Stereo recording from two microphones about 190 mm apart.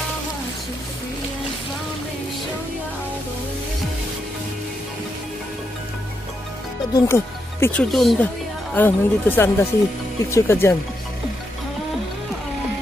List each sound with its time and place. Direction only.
6.9 s speech: 20° left (ahead or behind)
7.6 s speech: 5° left (ahead or behind)